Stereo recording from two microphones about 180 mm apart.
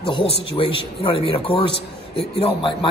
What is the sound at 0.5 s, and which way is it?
A man's voice, 30° left (ahead or behind).